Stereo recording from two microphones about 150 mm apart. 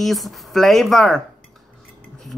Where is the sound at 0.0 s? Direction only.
Centre (ahead or behind).